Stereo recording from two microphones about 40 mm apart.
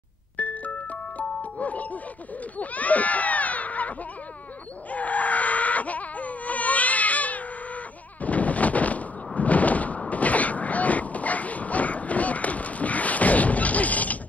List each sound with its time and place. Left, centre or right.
0.4 s music: left
2.6 s speech: left
4.9 s wail: left
8.2 s gunshot: left